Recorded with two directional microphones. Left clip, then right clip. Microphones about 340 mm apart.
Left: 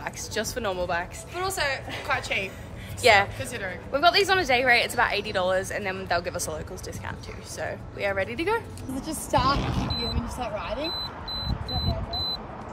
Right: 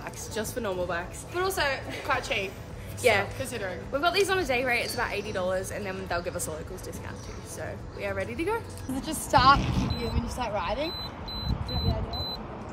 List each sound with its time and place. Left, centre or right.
0.0 s a woman's voice: centre
9.5 s speech: centre
9.8 s a woman's voice: centre